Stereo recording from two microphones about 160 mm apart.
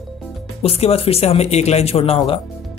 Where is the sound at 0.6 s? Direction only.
40° left (ahead or behind).